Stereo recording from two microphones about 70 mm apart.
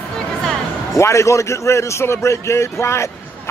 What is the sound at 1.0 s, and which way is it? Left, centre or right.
A man's voice, left.